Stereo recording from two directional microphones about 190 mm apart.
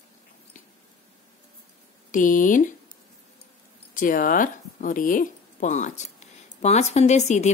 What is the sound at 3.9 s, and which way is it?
A woman's voice, 45° left (ahead or behind).